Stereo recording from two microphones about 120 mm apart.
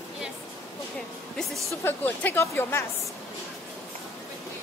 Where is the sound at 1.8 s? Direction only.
15° left (ahead or behind).